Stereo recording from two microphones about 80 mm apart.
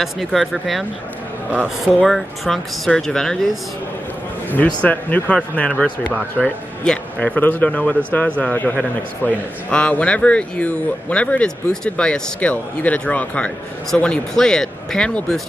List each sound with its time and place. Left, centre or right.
0.0 s speech: centre
2.0 s speech: centre
4.6 s a man's voice: centre